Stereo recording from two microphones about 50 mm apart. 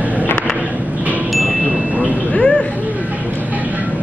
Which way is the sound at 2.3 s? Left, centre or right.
Left.